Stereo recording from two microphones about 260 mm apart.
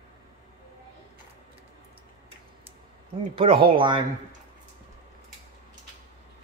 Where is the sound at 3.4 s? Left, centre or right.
Centre.